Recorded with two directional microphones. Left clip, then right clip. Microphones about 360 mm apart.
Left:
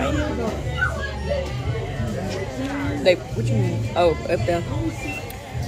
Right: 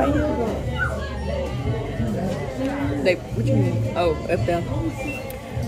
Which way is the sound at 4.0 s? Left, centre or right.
Centre.